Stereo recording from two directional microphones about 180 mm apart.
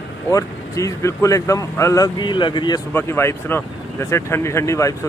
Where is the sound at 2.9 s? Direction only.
15° left (ahead or behind).